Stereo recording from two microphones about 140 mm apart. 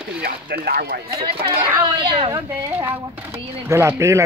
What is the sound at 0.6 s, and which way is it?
Speech, 90° right.